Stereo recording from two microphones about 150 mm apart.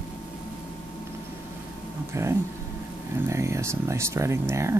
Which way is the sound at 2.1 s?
20° right (ahead or behind).